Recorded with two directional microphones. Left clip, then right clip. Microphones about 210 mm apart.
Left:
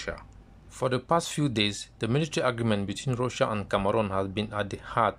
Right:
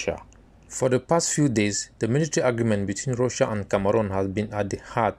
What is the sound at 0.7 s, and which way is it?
Speech, centre (ahead or behind).